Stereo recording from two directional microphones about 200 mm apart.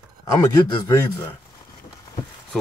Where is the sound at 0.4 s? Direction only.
15° left (ahead or behind).